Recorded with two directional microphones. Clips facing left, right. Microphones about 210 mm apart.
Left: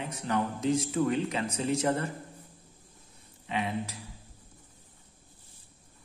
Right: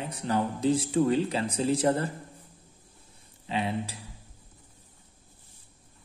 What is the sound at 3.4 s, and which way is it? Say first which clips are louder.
Speech: right 2 dB; 30° right (ahead or behind).